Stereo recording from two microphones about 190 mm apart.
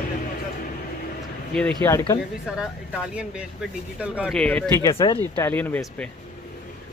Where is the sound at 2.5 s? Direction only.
5° right (ahead or behind).